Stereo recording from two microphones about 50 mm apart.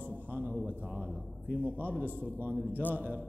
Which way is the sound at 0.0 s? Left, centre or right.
Right.